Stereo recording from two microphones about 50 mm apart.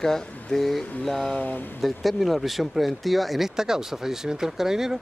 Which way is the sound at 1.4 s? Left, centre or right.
Left.